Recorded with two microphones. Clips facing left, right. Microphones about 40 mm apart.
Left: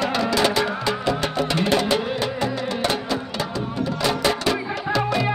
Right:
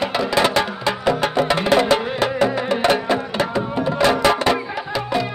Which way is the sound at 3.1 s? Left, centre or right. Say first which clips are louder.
Right 6 dB; right.